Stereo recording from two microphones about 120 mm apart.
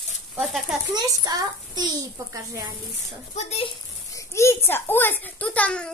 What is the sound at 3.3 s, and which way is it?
Speech, 65° left (ahead or behind).